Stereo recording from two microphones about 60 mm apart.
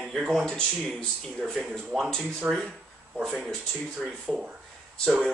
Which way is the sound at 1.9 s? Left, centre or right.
Centre.